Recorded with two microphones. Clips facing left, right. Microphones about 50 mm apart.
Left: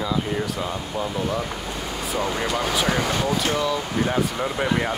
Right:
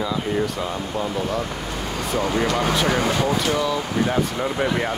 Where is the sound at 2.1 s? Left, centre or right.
Right.